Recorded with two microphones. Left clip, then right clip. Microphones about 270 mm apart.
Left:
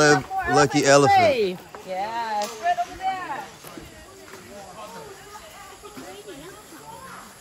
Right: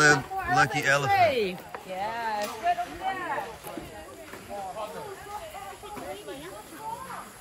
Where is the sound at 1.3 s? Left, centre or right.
Left.